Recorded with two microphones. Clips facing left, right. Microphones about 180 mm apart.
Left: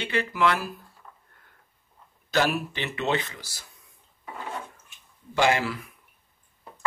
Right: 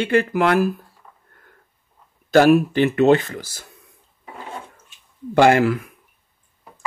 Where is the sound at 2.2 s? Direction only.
50° right (ahead or behind).